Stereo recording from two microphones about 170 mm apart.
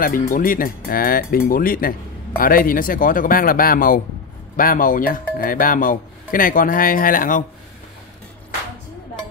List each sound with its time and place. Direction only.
0.0 s speech: 55° left (ahead or behind)